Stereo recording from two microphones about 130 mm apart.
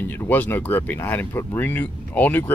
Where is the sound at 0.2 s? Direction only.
15° left (ahead or behind).